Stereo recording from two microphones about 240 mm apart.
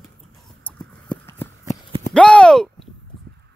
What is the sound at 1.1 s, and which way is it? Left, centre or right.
Shuffling cards, centre.